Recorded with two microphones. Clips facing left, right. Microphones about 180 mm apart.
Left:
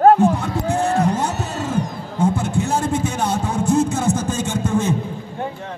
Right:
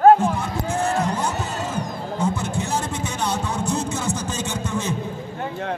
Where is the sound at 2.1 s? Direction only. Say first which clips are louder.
Left 5 dB; 55° left (ahead or behind).